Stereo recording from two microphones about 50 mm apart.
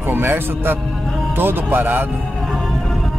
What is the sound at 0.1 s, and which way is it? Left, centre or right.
Speech, right.